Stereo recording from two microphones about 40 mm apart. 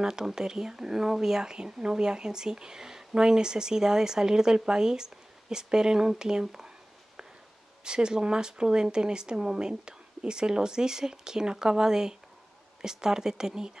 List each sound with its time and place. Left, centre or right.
0.0 s speech: centre
7.8 s speech: right